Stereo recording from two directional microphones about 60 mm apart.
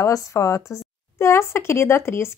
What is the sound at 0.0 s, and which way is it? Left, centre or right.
A woman's voice, left.